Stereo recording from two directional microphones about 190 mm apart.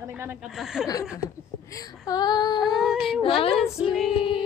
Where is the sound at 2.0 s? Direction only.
20° left (ahead or behind).